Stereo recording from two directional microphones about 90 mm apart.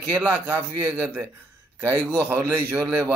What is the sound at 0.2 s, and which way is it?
Speech, 25° right (ahead or behind).